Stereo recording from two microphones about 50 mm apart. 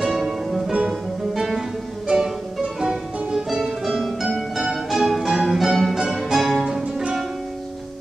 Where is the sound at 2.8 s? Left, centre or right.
Centre.